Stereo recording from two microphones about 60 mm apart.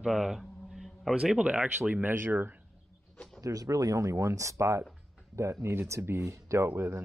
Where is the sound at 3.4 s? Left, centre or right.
Right.